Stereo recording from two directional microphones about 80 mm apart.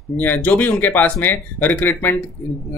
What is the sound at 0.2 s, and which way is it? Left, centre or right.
Speech, left.